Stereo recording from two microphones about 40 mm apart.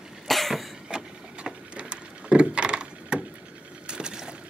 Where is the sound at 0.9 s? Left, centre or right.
Right.